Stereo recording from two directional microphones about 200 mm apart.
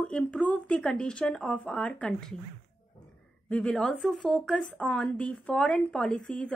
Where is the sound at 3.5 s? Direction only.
5° left (ahead or behind).